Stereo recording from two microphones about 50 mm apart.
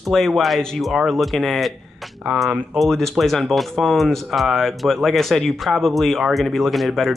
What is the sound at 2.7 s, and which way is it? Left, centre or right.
Speech, centre.